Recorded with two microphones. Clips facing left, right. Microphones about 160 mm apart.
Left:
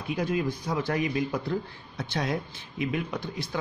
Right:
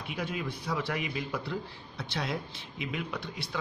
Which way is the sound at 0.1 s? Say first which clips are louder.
Left 8 dB; 40° left (ahead or behind).